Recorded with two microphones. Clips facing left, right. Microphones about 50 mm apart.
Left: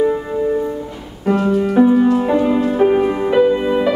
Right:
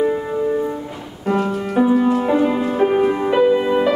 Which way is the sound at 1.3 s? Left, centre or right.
Centre.